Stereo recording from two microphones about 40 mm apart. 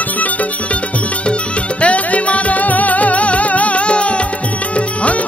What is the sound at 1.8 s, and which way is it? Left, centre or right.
Music, left.